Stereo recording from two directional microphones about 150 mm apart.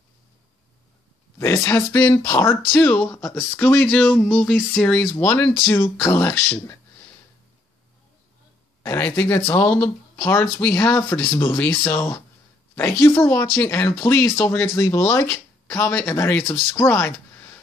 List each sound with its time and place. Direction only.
1.4 s speech: 20° left (ahead or behind)
8.8 s speech: 15° left (ahead or behind)